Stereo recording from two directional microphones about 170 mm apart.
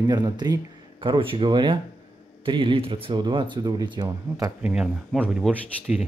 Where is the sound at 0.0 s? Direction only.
25° right (ahead or behind).